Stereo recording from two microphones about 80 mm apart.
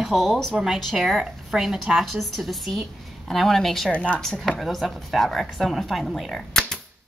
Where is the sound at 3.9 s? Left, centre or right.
Centre.